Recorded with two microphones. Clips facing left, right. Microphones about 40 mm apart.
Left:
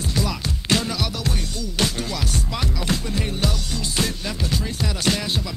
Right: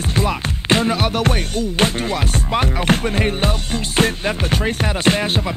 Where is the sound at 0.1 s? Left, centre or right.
Right.